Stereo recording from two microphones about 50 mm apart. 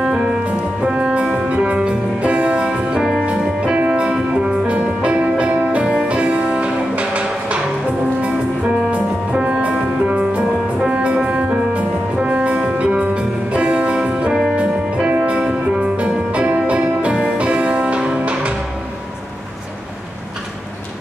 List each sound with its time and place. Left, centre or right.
0.0 s music: centre
5.0 s music: right
8.9 s music: right